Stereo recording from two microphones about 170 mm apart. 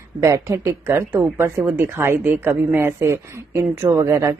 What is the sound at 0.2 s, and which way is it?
Speech, 15° right (ahead or behind).